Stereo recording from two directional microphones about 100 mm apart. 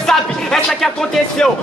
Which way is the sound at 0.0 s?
5° left (ahead or behind).